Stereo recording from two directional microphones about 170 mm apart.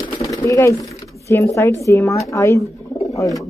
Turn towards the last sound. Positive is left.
turn(degrees=20)  # may be behind; listen again after turning